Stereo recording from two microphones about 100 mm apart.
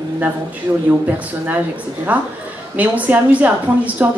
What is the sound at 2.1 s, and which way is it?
A woman's voice, 15° right (ahead or behind).